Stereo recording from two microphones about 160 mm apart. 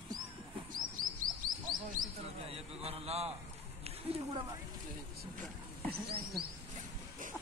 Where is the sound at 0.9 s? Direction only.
55° right (ahead or behind).